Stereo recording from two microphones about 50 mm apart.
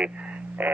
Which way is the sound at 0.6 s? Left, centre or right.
Right.